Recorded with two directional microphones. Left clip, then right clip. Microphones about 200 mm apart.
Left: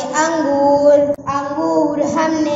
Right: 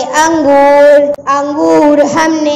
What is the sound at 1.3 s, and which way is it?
A woman's voice, 50° right (ahead or behind).